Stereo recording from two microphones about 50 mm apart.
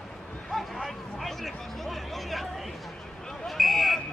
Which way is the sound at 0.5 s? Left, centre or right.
Centre.